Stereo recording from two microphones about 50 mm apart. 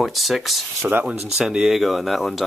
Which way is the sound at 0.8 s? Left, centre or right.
Right.